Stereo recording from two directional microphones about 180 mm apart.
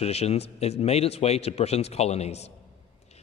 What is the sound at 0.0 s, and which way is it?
A man's voice, 35° left (ahead or behind).